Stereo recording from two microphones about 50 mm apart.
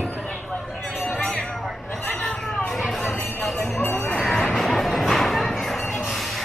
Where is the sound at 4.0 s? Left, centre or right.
Centre.